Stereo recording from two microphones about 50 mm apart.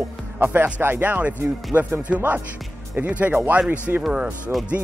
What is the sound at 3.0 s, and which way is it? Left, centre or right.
Speech, right.